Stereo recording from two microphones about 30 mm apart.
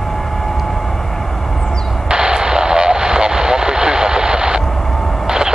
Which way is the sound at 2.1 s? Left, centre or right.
Right.